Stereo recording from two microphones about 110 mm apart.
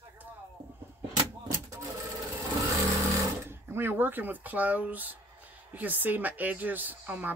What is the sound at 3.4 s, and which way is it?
Speech, 20° right (ahead or behind).